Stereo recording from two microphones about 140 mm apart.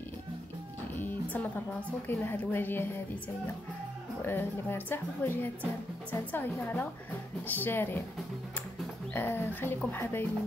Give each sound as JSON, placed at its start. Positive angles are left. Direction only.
{"t": 0.9, "sound": "speech", "side_deg": 15}
{"t": 4.2, "sound": "speech", "side_deg": 15}
{"t": 9.1, "sound": "speech", "side_deg": 15}